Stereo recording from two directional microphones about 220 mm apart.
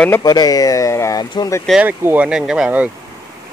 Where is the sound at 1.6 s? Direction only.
5° right (ahead or behind).